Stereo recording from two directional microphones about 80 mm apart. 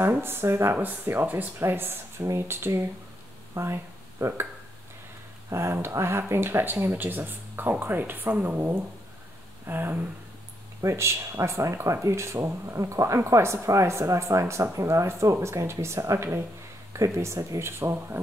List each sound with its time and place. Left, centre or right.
0.0 s speech: right
5.5 s speech: right